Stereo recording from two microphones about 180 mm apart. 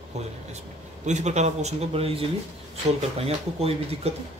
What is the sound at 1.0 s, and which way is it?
A man's voice, 40° right (ahead or behind).